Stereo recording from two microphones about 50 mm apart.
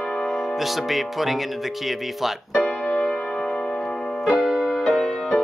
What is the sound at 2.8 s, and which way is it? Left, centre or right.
Keyboard, centre.